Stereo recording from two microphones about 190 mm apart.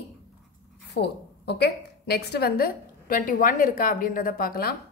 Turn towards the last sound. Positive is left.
turn(degrees=50)  # may be behind; listen again after turning